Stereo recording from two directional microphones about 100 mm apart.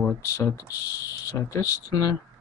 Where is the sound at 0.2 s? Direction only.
30° left (ahead or behind).